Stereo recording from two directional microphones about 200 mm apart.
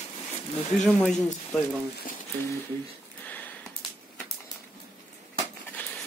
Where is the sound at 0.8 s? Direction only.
5° left (ahead or behind).